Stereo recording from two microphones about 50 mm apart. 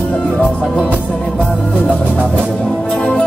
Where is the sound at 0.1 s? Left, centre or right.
Left.